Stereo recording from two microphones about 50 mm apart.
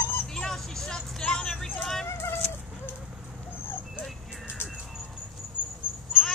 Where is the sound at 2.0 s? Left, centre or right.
Left.